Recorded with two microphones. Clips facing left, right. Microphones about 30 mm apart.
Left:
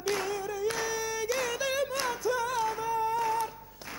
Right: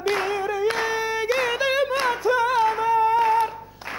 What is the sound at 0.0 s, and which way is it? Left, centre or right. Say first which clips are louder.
Yodeling: right 8 dB; right.